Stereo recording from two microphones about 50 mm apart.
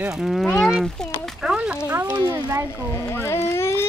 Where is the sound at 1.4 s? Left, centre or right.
Centre.